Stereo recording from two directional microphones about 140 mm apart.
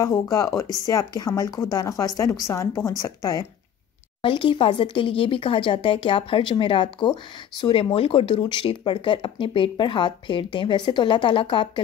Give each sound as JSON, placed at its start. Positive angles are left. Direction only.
{"t": 0.0, "sound": "a woman's voice", "side_deg": 25}
{"t": 4.2, "sound": "speech", "side_deg": 40}